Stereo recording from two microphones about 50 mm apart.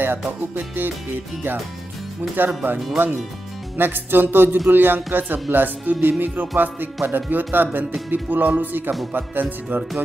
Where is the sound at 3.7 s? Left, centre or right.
Right.